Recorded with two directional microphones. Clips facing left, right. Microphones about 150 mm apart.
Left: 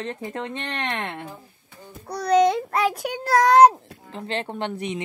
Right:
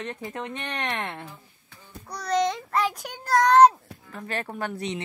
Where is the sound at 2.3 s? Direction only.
10° left (ahead or behind).